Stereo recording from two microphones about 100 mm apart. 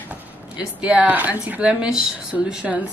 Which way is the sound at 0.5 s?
10° right (ahead or behind).